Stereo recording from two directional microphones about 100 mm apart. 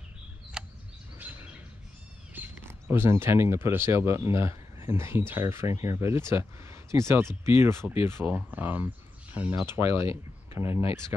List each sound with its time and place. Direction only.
0.6 s a sound: 5° right (ahead or behind)
1.1 s bird: 15° right (ahead or behind)
2.3 s speech: 25° right (ahead or behind)